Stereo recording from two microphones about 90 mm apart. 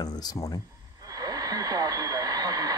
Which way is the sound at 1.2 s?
45° right (ahead or behind).